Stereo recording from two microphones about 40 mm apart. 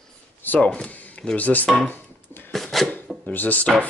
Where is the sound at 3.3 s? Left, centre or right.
Left.